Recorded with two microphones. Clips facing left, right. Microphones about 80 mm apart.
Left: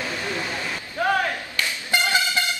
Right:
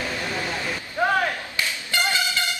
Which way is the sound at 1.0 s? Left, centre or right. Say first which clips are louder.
Even; right.